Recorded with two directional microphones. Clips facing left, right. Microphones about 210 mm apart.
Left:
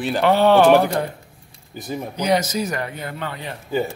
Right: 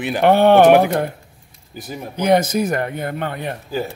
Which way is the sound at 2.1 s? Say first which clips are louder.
Right 5 dB; 55° right (ahead or behind).